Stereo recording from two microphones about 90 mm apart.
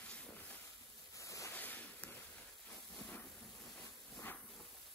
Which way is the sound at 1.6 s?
20° left (ahead or behind).